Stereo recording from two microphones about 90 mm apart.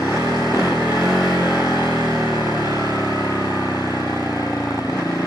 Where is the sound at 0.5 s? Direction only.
45° left (ahead or behind).